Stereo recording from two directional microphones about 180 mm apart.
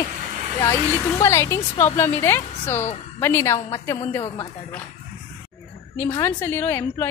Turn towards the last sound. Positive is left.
turn(degrees=10)  # may be behind; listen again after turning